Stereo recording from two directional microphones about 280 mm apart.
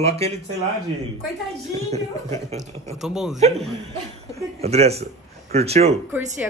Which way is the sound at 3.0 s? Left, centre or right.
Centre.